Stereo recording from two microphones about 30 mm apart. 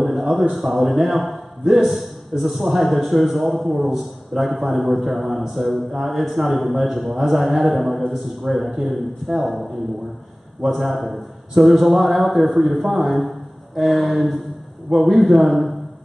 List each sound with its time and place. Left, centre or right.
0.0 s a man's voice: centre
1.6 s a man's voice: centre
1.9 s a man's voice: centre
3.7 s a man's voice: centre